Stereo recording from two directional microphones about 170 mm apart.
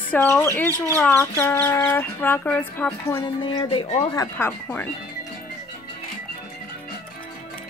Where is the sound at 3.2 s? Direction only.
25° left (ahead or behind).